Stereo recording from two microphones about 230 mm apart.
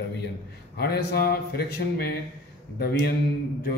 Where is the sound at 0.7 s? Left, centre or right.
Left.